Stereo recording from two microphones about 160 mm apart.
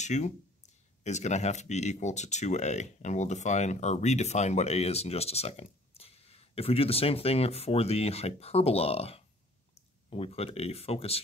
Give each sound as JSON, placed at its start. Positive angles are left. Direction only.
{"t": 0.0, "sound": "speech", "side_deg": 45}